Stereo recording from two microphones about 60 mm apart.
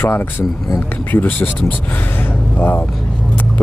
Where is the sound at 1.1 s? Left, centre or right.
Left.